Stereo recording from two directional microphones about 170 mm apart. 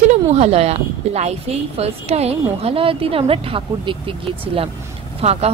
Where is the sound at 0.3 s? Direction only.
35° right (ahead or behind).